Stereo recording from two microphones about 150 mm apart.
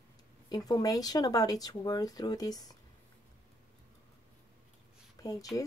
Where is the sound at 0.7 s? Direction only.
25° left (ahead or behind).